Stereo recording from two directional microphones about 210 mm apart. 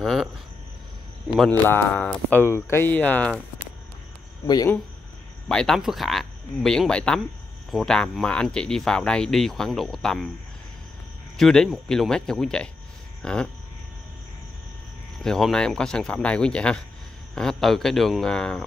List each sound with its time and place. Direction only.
0.0 s speech: centre (ahead or behind)
1.3 s speech: 5° left (ahead or behind)
4.5 s speech: 20° left (ahead or behind)
5.5 s speech: centre (ahead or behind)
11.3 s speech: centre (ahead or behind)
15.2 s speech: centre (ahead or behind)